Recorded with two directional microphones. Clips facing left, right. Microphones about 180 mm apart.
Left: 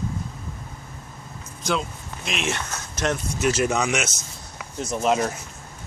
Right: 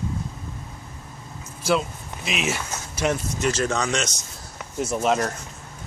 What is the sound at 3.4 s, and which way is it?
Speech, 10° left (ahead or behind).